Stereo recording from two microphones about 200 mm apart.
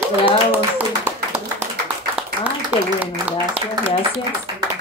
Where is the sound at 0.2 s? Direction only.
10° right (ahead or behind).